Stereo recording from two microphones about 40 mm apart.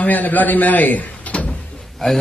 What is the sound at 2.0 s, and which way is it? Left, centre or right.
Speech, centre.